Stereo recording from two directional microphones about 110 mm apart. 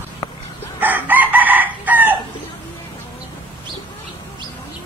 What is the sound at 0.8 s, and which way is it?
Chicken, 15° right (ahead or behind).